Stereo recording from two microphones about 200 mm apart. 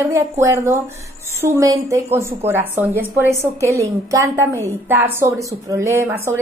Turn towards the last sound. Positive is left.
turn(degrees=-15)  # may be behind; listen again after turning